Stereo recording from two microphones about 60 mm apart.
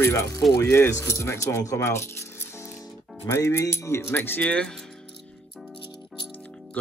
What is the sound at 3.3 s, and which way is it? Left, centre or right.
Speech, left.